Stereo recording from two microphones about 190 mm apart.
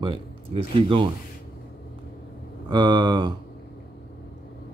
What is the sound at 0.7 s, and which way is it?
Speech, 25° right (ahead or behind).